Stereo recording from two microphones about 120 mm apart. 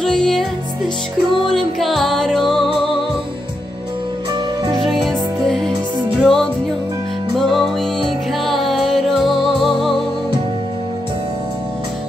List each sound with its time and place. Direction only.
0.0 s music: 5° left (ahead or behind)
1.5 s music: centre (ahead or behind)
5.0 s music: 5° left (ahead or behind)
5.7 s music: 40° right (ahead or behind)
6.2 s music: 5° left (ahead or behind)